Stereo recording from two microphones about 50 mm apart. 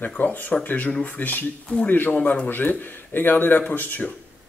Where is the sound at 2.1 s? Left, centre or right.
Left.